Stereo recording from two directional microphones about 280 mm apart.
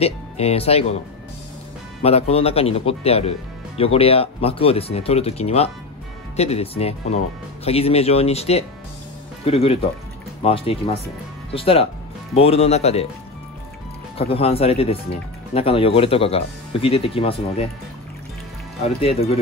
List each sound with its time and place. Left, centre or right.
0.0 s speech: left
2.0 s speech: left
14.1 s speech: left
18.9 s speech: left